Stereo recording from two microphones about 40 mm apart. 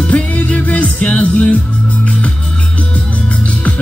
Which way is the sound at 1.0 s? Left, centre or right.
Left.